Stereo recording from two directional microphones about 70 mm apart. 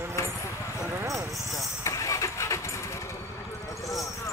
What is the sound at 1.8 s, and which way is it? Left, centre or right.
Vehicle, left.